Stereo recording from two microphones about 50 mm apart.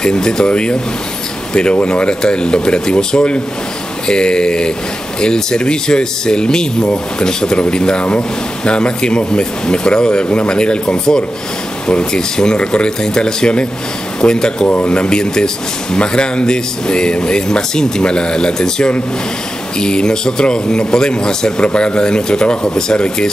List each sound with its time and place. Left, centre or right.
0.0 s speech: centre